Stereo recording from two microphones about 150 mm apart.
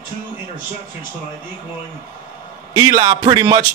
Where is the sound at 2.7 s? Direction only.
25° right (ahead or behind).